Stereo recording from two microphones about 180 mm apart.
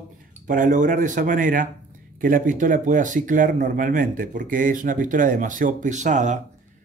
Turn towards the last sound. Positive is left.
turn(degrees=-40)  # may be behind; listen again after turning